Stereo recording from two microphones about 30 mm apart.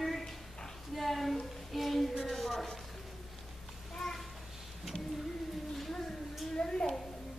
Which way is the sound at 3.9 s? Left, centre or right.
Centre.